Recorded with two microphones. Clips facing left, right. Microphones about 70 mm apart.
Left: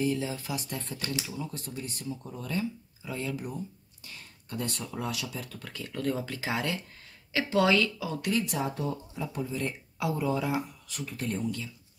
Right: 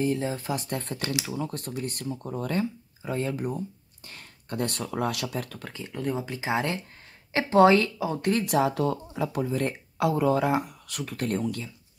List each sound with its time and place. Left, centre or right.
0.0 s speech: right
5.7 s speech: right
8.3 s speech: right
8.5 s speech: right